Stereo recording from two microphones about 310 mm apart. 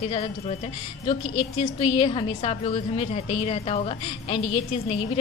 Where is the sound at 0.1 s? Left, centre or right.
Left.